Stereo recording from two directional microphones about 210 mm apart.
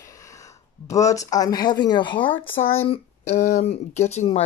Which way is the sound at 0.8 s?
15° left (ahead or behind).